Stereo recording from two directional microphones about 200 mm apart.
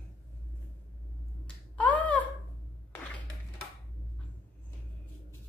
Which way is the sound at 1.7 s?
5° left (ahead or behind).